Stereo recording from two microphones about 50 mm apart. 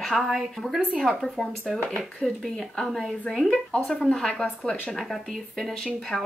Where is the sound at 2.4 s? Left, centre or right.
Centre.